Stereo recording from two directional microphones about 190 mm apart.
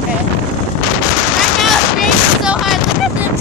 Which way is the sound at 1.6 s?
Centre (ahead or behind).